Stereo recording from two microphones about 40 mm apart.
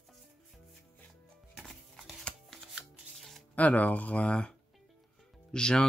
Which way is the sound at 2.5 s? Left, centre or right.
Centre.